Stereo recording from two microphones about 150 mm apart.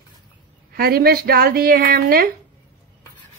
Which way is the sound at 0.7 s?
90° right.